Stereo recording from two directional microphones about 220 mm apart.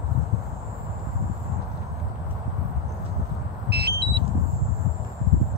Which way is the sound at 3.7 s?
45° right (ahead or behind).